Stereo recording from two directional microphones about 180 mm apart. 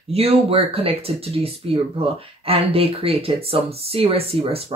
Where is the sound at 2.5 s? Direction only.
30° right (ahead or behind).